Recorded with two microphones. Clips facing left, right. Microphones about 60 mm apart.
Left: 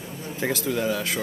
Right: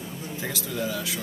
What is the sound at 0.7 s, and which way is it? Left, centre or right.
Speech, left.